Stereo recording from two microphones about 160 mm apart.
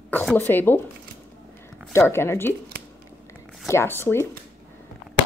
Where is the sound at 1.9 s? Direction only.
15° left (ahead or behind).